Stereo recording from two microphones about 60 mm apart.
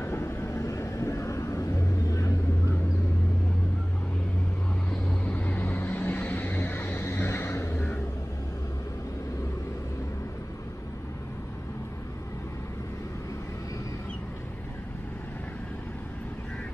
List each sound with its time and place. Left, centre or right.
0.0 s vehicle: left
5.0 s vehicle: left